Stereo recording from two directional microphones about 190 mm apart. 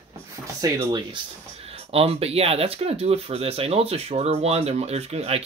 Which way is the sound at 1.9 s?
30° right (ahead or behind).